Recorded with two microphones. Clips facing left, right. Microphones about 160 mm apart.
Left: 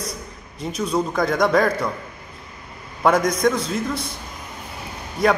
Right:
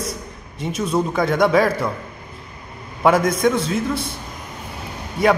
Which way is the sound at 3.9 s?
25° right (ahead or behind).